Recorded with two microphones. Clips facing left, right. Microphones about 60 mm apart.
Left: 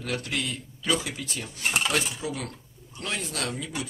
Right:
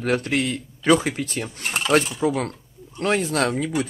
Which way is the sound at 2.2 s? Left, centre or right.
Right.